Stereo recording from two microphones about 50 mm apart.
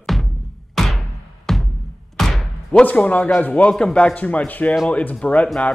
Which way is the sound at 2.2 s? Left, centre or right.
Centre.